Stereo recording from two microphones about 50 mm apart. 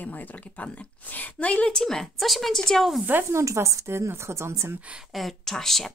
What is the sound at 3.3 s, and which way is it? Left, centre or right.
A woman's voice, right.